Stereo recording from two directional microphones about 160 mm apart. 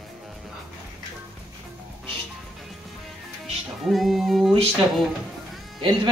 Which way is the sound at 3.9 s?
Centre (ahead or behind).